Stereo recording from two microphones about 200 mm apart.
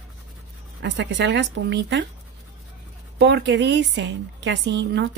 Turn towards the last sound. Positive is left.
turn(degrees=-60)  # may be behind; listen again after turning